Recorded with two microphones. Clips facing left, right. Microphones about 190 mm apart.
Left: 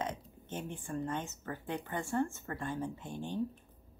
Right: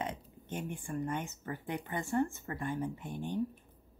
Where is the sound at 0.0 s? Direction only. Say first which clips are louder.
Left 1 dB; 15° right (ahead or behind).